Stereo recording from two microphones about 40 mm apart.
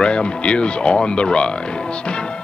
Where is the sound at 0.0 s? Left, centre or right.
Left.